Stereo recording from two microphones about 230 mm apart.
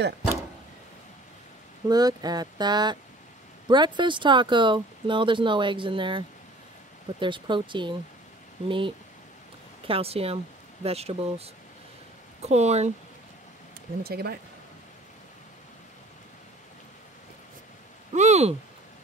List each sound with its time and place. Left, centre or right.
1.9 s speech: centre
14.0 s speech: right
18.1 s speech: right